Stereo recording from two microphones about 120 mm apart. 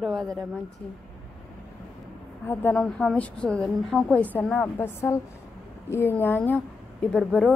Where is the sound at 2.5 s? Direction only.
15° left (ahead or behind).